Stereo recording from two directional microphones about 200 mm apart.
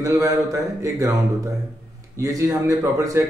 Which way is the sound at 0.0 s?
15° right (ahead or behind).